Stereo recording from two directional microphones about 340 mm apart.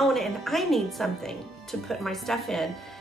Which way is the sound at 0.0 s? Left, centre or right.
Centre.